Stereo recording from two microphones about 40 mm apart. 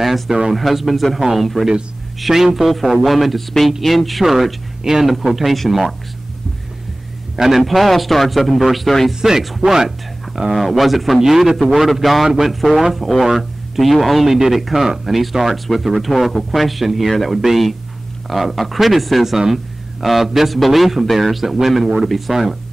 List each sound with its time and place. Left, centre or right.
0.0 s speech: centre
7.3 s speech: centre
9.1 s speech: centre